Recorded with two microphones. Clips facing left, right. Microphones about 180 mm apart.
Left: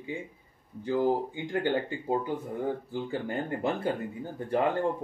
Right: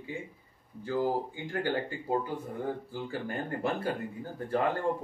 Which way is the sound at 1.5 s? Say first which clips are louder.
Left 4 dB; 20° left (ahead or behind).